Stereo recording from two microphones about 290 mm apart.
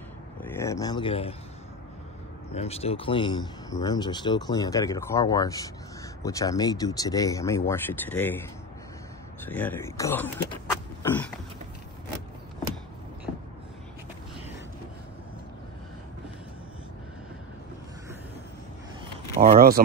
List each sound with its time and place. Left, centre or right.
0.4 s a sound: centre
2.5 s speech: left
9.4 s speech: centre
19.4 s speech: right